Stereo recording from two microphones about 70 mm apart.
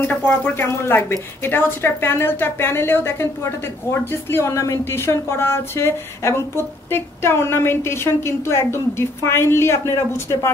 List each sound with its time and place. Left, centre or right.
0.0 s speech: left
4.5 s speech: left